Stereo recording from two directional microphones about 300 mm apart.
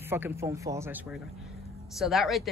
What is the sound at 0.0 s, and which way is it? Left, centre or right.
A woman's voice, centre.